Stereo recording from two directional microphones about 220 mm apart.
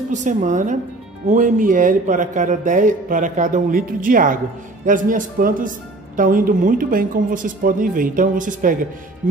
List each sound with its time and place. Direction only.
0.1 s speech: 35° right (ahead or behind)